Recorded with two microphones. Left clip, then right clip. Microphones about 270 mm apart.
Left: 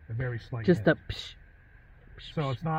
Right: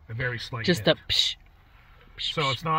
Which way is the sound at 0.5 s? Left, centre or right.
Right.